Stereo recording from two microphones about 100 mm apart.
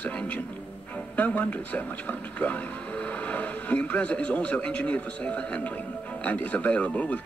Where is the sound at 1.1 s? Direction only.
15° left (ahead or behind).